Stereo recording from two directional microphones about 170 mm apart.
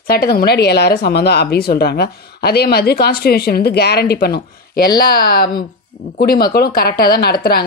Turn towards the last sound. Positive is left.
turn(degrees=65)  # may be behind; listen again after turning